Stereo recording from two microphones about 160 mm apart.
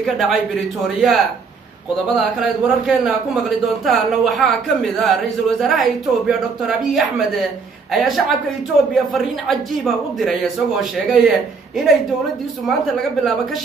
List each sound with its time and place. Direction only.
0.0 s a man's voice: centre (ahead or behind)